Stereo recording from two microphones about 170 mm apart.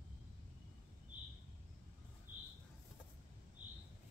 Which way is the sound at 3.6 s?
50° right (ahead or behind).